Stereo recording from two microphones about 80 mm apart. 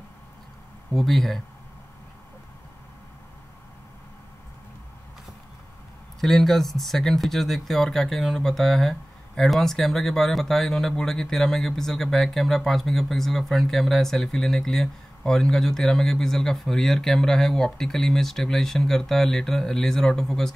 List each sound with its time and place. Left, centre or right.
0.9 s speech: centre
6.2 s speech: centre